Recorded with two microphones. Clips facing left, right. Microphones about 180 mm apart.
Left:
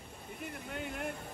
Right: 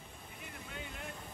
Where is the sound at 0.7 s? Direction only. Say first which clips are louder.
Left 8 dB; 55° left (ahead or behind).